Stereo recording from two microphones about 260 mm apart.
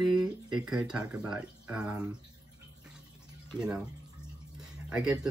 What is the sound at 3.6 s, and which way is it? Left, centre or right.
Speech, centre.